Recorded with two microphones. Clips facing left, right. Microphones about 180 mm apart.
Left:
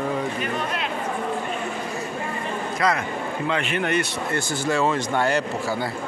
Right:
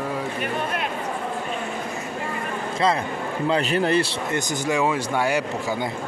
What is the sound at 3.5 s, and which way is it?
Speech, 35° right (ahead or behind).